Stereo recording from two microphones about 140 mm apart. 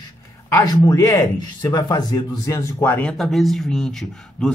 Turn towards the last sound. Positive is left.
turn(degrees=5)  # may be behind; listen again after turning